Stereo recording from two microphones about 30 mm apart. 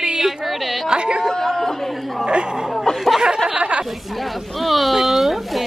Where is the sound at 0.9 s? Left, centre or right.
Right.